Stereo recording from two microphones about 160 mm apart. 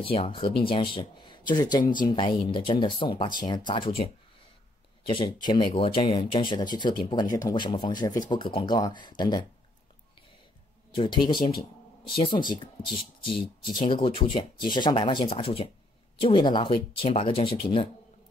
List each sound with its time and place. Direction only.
0.0 s speech: 35° left (ahead or behind)
11.0 s speech: 30° left (ahead or behind)